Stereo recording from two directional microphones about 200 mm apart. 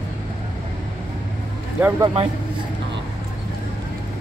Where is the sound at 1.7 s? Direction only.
10° right (ahead or behind).